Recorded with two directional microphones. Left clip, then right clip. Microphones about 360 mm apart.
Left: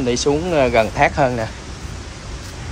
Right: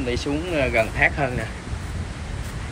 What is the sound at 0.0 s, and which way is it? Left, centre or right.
Speech, centre.